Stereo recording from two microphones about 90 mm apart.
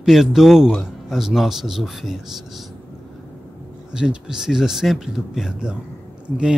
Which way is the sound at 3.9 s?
10° right (ahead or behind).